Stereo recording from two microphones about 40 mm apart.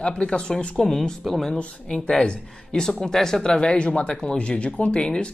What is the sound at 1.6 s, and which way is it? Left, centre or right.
Speech, left.